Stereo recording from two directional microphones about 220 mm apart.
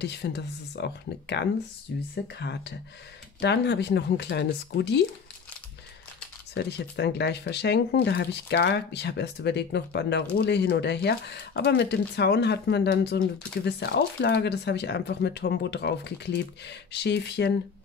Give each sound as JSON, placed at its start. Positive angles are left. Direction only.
{"t": 0.0, "sound": "speech", "side_deg": 50}
{"t": 6.5, "sound": "speech", "side_deg": 50}